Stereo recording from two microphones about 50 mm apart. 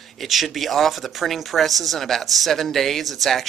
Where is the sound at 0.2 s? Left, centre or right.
Centre.